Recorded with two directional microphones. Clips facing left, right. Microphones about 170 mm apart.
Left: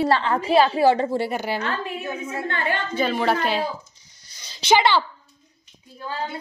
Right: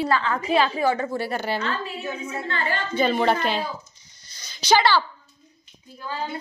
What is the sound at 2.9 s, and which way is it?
Speech, 5° left (ahead or behind).